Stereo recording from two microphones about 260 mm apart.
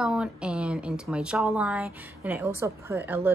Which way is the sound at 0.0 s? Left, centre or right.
Centre.